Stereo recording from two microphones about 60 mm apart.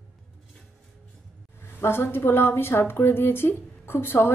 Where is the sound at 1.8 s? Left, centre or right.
Left.